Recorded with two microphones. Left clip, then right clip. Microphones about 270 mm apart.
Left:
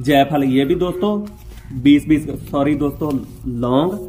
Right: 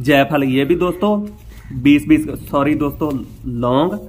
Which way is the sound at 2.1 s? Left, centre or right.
Centre.